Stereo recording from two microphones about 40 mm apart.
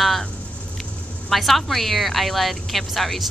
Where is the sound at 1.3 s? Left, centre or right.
Centre.